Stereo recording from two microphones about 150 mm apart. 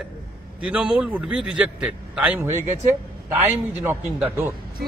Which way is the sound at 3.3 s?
15° right (ahead or behind).